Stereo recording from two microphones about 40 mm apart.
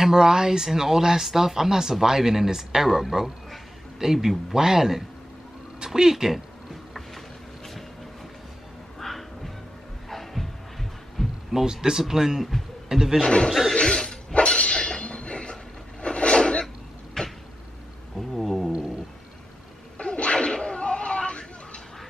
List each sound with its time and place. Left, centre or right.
0.0 s speech: centre
9.0 s music: centre
11.5 s speech: centre
13.5 s a sound: centre
13.7 s a sound: left
16.0 s filing: left
17.2 s cupboard open or close: centre
18.1 s a sound: centre
18.7 s cat: right
20.0 s whip: left